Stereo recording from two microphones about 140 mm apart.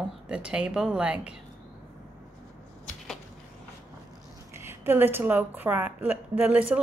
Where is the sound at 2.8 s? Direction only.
5° left (ahead or behind).